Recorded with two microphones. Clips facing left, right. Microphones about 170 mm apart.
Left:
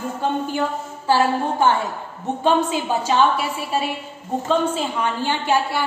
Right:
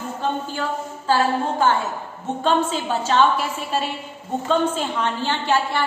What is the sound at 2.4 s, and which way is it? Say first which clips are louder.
Speech: left 2 dB; 10° left (ahead or behind).